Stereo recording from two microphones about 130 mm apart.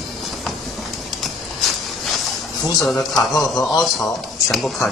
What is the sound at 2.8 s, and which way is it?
A man's voice, centre (ahead or behind).